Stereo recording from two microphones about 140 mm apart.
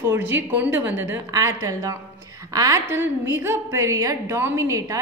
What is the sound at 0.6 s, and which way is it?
A woman's voice, 15° right (ahead or behind).